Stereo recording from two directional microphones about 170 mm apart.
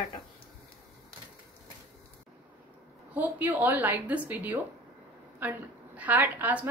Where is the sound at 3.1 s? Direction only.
10° right (ahead or behind).